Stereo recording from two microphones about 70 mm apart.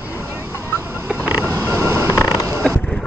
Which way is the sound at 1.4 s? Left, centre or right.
Right.